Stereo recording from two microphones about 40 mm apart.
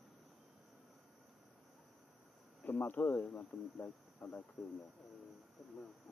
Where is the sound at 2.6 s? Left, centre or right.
Left.